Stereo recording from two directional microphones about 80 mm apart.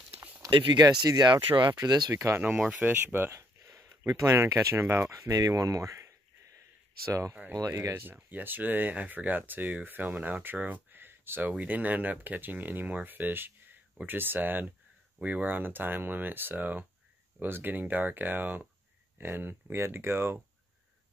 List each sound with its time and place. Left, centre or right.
0.5 s speech: right
1.0 s speech: right
2.1 s speech: right
5.1 s speech: right
7.4 s speech: centre
7.7 s speech: right